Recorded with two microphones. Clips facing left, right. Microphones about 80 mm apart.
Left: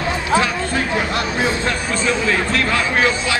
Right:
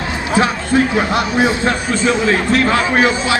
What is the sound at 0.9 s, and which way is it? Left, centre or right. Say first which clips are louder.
Speech: right 5 dB; centre.